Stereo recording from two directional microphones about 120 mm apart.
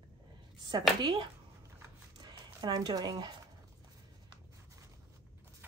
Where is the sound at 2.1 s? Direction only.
35° right (ahead or behind).